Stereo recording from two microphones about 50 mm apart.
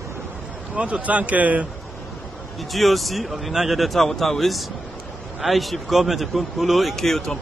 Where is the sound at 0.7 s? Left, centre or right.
Right.